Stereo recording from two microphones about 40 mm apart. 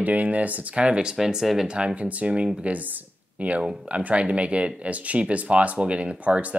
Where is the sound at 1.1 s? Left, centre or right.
Centre.